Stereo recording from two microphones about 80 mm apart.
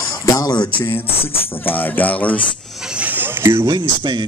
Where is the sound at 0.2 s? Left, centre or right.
Left.